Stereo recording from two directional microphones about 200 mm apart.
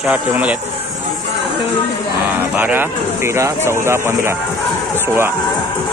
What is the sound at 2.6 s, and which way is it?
Speech, 10° right (ahead or behind).